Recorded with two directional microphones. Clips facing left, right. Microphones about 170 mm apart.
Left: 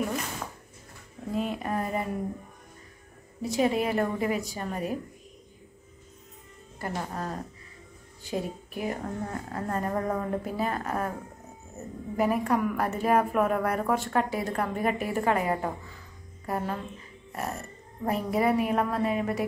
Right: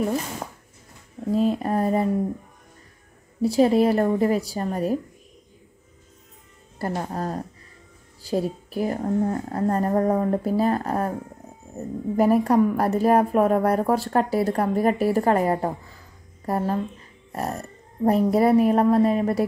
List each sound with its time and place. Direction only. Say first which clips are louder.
1.3 s speech: right 8 dB; 35° right (ahead or behind)
3.4 s speech: right 8 dB; 35° right (ahead or behind)
6.8 s speech: right 6 dB; 35° right (ahead or behind)
17.3 s a sound: right 5 dB; 35° right (ahead or behind)
18.0 s speech: right 7 dB; 35° right (ahead or behind)